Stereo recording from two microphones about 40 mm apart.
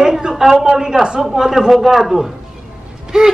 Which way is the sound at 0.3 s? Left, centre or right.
Centre.